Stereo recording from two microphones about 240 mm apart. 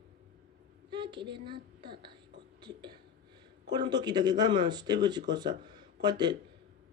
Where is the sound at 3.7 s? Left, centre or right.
Centre.